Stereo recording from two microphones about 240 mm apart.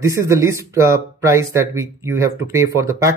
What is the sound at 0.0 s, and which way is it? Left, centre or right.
Speech, centre.